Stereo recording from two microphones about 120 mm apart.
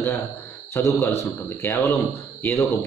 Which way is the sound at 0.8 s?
20° left (ahead or behind).